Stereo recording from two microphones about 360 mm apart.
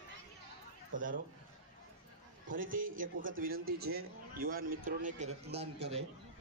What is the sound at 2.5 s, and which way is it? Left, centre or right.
A man's voice, right.